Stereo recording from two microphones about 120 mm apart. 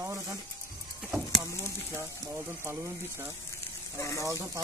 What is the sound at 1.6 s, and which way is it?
Speech, 25° right (ahead or behind).